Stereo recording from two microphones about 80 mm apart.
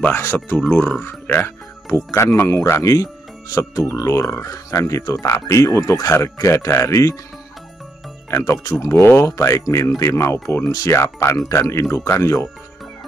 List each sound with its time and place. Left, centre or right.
0.1 s speech: left
8.3 s speech: left
8.9 s speech: left